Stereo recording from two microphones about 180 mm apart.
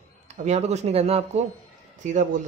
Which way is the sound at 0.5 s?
35° right (ahead or behind).